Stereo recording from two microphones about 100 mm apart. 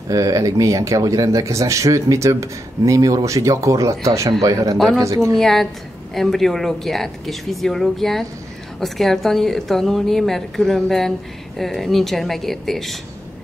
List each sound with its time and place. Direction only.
0.1 s speech: 35° right (ahead or behind)
5.3 s a woman's voice: 5° left (ahead or behind)